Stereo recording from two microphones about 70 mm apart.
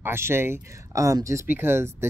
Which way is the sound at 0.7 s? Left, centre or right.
Right.